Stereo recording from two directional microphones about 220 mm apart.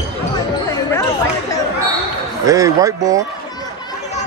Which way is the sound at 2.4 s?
15° right (ahead or behind).